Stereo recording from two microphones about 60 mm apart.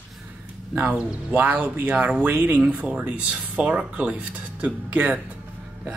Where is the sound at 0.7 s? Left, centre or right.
Right.